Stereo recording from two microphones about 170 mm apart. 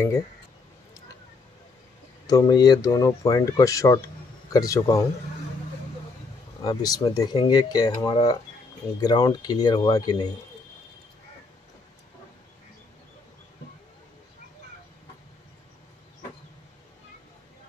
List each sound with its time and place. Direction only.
2.2 s speech: 20° left (ahead or behind)
6.6 s speech: 20° left (ahead or behind)